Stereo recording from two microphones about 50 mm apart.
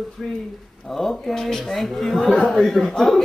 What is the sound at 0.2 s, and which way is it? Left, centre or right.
A man's voice, centre.